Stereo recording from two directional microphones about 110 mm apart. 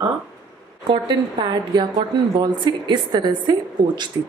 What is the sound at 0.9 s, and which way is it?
A woman's voice, 40° right (ahead or behind).